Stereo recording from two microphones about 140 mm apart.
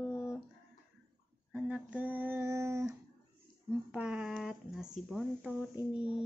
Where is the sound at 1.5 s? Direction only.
10° right (ahead or behind).